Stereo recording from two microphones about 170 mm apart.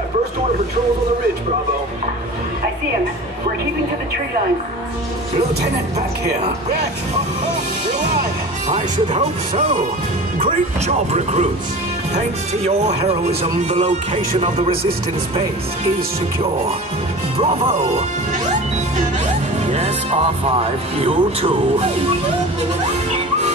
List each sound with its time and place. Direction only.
8.6 s speech: 45° right (ahead or behind)
12.2 s speech: 40° right (ahead or behind)
14.7 s speech: 65° right (ahead or behind)
17.4 s speech: 35° right (ahead or behind)
19.7 s speech: 40° right (ahead or behind)